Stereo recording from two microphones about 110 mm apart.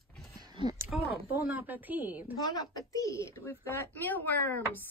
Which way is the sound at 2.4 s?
35° left (ahead or behind).